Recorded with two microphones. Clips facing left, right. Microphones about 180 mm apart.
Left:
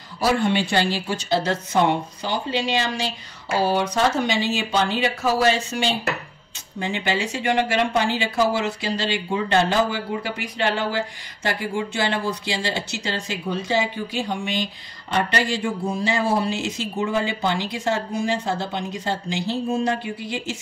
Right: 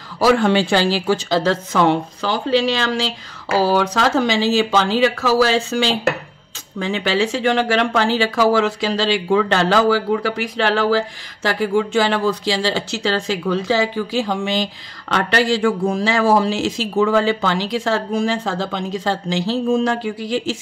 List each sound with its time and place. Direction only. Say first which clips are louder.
0.2 s speech: right 6 dB; 90° right